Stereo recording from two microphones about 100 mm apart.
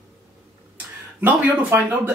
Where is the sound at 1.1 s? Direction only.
20° right (ahead or behind).